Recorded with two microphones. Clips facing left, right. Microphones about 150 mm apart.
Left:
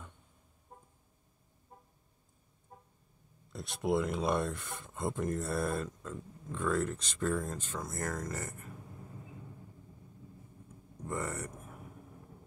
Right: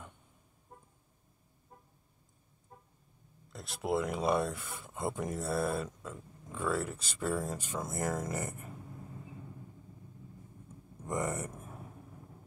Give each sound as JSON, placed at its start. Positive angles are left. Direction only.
{"t": 3.5, "sound": "speech", "side_deg": 0}
{"t": 11.1, "sound": "speech", "side_deg": -15}